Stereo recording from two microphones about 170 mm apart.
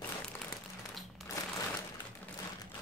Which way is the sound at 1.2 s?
Centre (ahead or behind).